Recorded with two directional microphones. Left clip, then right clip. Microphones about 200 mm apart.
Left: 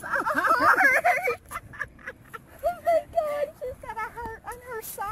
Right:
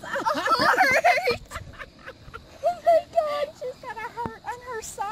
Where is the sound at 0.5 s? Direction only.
30° right (ahead or behind).